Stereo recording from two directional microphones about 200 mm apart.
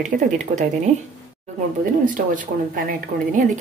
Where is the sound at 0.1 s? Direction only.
40° right (ahead or behind).